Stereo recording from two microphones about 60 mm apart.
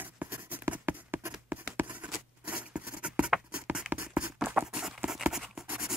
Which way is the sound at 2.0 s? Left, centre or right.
Right.